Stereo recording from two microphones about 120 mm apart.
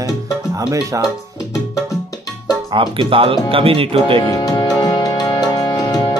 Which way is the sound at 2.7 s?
45° right (ahead or behind).